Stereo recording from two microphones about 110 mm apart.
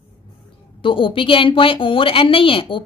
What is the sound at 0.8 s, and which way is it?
A woman's voice, 50° left (ahead or behind).